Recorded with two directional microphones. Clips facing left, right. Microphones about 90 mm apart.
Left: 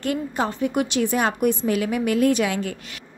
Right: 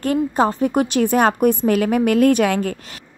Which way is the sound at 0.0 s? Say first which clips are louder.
Right 7 dB; 40° right (ahead or behind).